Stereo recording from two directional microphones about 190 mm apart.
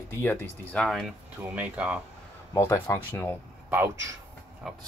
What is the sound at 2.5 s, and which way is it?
Speech, 15° left (ahead or behind).